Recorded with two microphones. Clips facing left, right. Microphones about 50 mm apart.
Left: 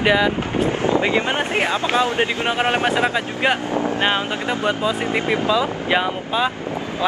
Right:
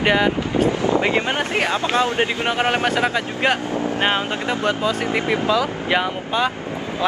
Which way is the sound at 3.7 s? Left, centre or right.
Left.